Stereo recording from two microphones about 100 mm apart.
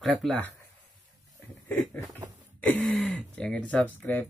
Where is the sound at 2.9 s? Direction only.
5° left (ahead or behind).